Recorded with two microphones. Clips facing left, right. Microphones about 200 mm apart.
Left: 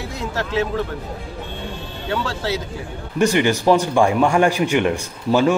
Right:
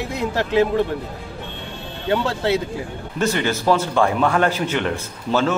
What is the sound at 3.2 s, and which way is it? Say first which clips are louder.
A man's voice: left 4 dB; 15° left (ahead or behind).